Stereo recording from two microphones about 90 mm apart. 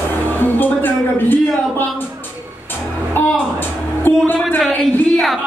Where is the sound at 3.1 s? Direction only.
20° left (ahead or behind).